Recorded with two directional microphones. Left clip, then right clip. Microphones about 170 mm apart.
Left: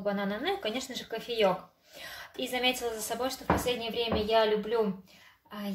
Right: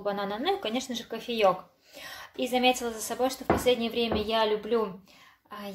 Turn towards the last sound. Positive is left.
turn(degrees=-25)  # may be behind; listen again after turning